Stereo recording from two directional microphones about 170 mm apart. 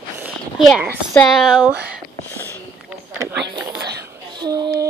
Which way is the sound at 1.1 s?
Centre (ahead or behind).